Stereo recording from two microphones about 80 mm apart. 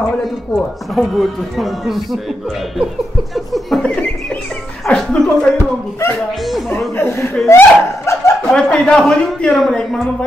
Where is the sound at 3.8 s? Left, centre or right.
Centre.